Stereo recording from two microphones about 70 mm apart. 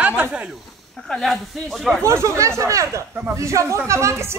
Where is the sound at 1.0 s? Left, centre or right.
Centre.